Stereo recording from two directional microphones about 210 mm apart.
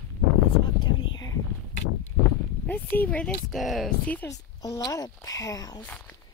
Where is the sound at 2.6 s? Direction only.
10° left (ahead or behind).